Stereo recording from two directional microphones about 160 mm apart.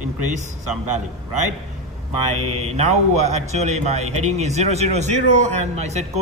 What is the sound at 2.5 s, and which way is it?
A man's voice, 40° right (ahead or behind).